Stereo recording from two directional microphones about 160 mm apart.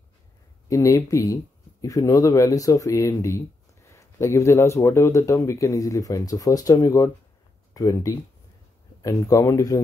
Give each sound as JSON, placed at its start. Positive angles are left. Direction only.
{"t": 0.7, "sound": "speech", "side_deg": 20}